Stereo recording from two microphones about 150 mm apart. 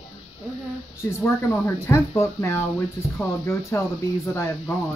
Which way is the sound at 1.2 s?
15° left (ahead or behind).